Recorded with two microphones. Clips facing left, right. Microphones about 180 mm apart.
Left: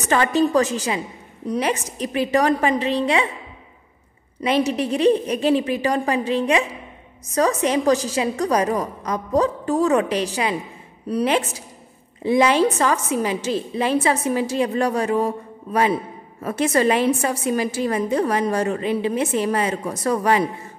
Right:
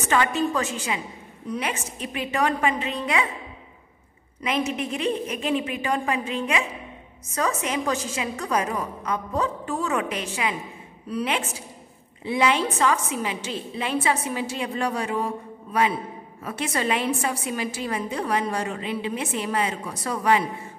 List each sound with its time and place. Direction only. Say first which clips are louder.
0.0 s a woman's voice: left 4 dB; 35° left (ahead or behind)
4.4 s a woman's voice: left 6 dB; 35° left (ahead or behind)